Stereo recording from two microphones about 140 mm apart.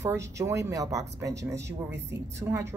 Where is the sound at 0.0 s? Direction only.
20° right (ahead or behind).